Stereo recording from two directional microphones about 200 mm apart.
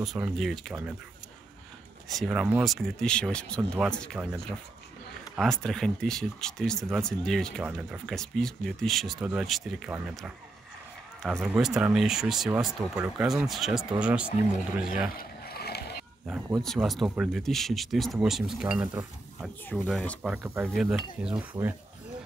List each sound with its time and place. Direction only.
0.0 s speech: centre (ahead or behind)
2.0 s speech: centre (ahead or behind)
5.4 s speech: centre (ahead or behind)
11.3 s speech: 5° right (ahead or behind)
15.1 s a sound: 50° left (ahead or behind)
16.3 s a sound: 5° right (ahead or behind)
16.6 s speech: centre (ahead or behind)
19.8 s speech: 5° left (ahead or behind)
20.4 s a sound: 10° right (ahead or behind)